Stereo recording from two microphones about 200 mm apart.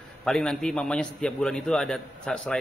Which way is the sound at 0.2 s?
5° left (ahead or behind).